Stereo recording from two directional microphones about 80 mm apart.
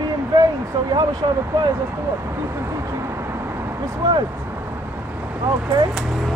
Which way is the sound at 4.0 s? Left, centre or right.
Right.